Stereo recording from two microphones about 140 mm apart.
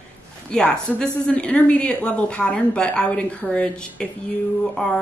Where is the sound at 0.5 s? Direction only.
5° left (ahead or behind).